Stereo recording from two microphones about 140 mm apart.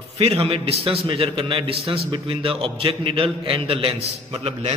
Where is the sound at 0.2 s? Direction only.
45° right (ahead or behind).